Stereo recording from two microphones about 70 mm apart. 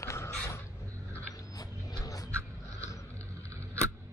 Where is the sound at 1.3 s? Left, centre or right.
Left.